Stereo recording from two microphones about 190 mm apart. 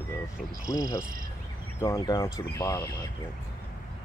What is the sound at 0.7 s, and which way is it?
Speech, 15° left (ahead or behind).